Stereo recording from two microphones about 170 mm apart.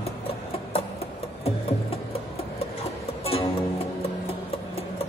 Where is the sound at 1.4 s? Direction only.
35° left (ahead or behind).